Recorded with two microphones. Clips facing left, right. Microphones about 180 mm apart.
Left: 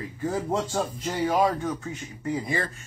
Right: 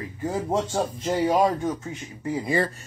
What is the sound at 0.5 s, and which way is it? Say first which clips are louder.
Speech: right 4 dB; 25° right (ahead or behind).